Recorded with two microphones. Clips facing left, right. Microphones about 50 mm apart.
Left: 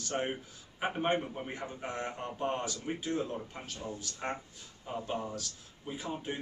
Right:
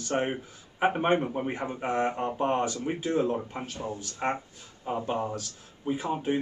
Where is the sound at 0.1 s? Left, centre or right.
Right.